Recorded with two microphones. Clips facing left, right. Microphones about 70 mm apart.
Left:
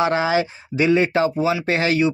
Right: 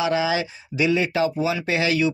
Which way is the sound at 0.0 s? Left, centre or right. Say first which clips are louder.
Left 3 dB; left.